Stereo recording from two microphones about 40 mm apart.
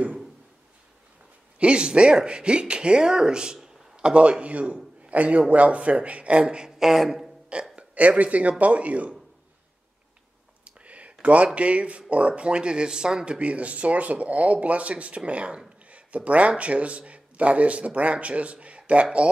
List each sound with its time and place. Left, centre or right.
1.6 s a man's voice: right
6.8 s speech: centre
7.7 s speech: right
10.6 s clicking: right
11.2 s a man's voice: right